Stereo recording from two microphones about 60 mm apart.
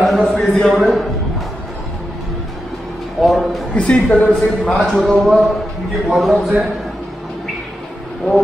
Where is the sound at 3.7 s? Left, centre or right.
Centre.